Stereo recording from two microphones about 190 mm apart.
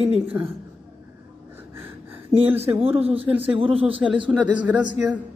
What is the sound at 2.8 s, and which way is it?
A woman's voice, 30° right (ahead or behind).